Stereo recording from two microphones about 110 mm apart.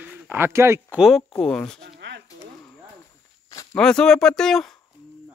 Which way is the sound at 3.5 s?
30° left (ahead or behind).